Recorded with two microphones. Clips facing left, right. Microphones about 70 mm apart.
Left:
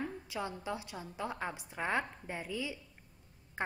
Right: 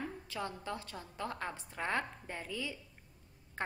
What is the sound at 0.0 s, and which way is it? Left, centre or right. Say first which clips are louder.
A woman's voice: left 2 dB; centre.